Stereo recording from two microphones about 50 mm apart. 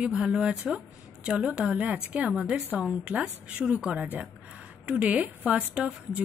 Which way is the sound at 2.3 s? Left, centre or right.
Centre.